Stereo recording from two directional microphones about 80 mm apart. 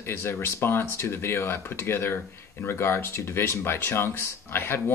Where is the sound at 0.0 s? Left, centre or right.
Left.